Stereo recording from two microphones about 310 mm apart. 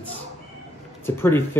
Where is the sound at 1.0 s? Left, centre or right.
Centre.